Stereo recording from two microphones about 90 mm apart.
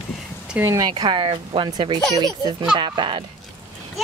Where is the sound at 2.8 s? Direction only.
60° right (ahead or behind).